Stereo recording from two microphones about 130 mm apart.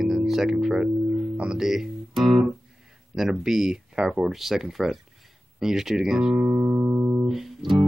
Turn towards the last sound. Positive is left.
turn(degrees=0)  # may be behind; listen again after turning